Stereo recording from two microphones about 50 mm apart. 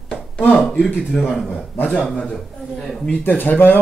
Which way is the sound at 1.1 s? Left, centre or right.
Centre.